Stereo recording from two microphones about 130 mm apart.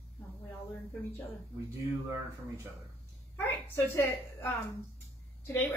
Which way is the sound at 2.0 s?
20° right (ahead or behind).